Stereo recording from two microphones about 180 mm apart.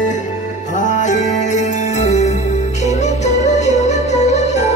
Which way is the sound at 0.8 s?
45° left (ahead or behind).